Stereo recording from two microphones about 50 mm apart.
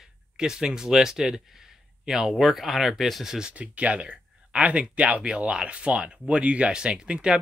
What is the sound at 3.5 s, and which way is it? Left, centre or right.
Speech, right.